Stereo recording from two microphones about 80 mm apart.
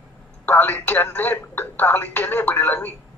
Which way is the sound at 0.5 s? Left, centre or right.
Left.